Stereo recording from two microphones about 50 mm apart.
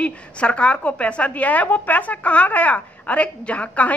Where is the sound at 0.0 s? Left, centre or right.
Left.